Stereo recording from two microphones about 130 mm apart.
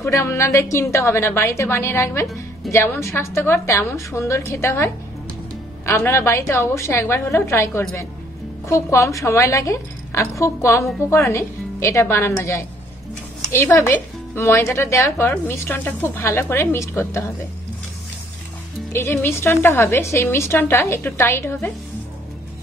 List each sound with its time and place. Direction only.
0.0 s speech: 20° left (ahead or behind)
18.9 s speech: 20° left (ahead or behind)